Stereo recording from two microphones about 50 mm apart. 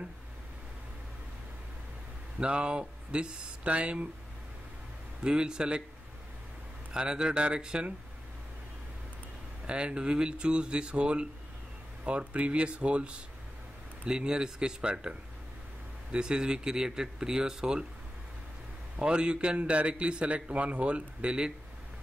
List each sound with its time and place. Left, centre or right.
2.3 s a man's voice: right
5.2 s speech: centre
6.9 s speech: centre
9.7 s a man's voice: right
18.9 s a man's voice: right